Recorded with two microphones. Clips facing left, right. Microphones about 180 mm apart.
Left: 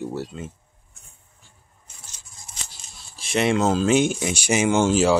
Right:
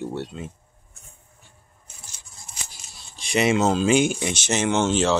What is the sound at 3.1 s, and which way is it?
Speech, centre (ahead or behind).